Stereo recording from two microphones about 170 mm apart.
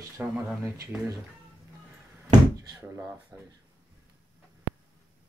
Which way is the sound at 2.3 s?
20° right (ahead or behind).